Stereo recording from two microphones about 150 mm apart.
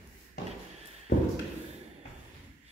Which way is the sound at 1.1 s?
90° left.